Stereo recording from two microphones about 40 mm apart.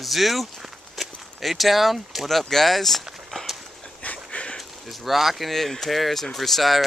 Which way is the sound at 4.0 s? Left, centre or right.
Left.